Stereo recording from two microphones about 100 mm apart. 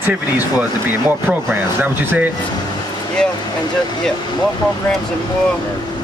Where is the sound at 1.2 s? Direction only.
25° right (ahead or behind).